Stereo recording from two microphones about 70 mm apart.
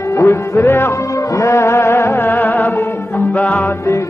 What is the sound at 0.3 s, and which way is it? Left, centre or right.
Music, left.